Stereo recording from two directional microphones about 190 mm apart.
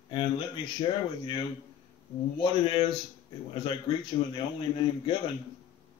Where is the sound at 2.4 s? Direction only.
25° left (ahead or behind).